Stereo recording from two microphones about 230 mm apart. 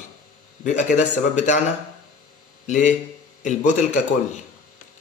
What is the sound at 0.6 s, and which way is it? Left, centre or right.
A man's voice, left.